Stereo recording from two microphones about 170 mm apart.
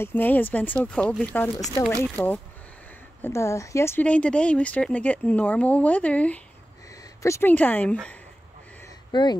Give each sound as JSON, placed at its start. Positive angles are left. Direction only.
{"t": 0.0, "sound": "speech", "side_deg": 10}
{"t": 9.1, "sound": "speech", "side_deg": 25}